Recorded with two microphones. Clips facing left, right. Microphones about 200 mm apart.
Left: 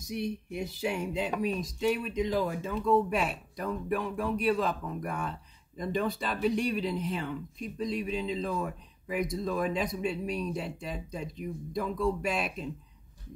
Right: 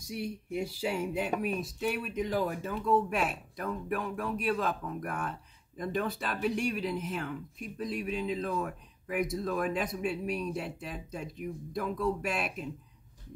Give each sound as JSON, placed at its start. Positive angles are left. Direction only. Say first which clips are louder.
{"t": 0.1, "sound": "speech", "louder": "left 1 dB", "side_deg": -5}